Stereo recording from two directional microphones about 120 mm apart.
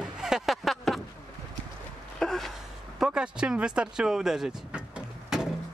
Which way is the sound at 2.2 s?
5° left (ahead or behind).